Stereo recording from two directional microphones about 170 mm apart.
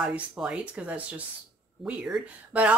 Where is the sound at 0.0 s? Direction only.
5° right (ahead or behind).